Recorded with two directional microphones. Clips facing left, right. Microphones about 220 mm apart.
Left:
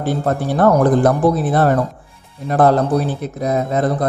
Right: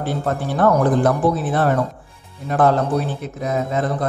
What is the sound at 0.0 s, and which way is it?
A man's voice, 40° left (ahead or behind).